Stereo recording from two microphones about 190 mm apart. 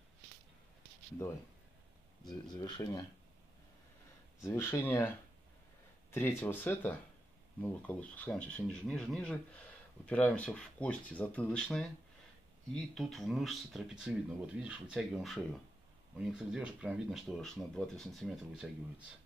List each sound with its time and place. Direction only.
2.4 s speech: 20° left (ahead or behind)
4.4 s speech: 15° left (ahead or behind)
6.1 s speech: 10° left (ahead or behind)